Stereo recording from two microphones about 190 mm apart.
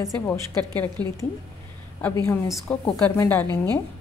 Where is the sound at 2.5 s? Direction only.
5° left (ahead or behind).